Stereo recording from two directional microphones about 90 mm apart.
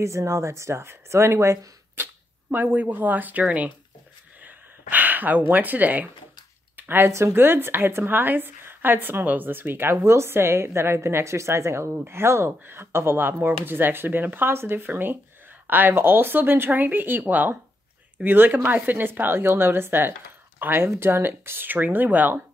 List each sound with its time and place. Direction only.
0.0 s speech: 35° right (ahead or behind)
2.5 s a woman's voice: 20° right (ahead or behind)
4.5 s gasp: 20° right (ahead or behind)
5.5 s a woman's voice: 20° right (ahead or behind)
6.8 s a sound: 25° right (ahead or behind)
7.1 s a woman's voice: 30° right (ahead or behind)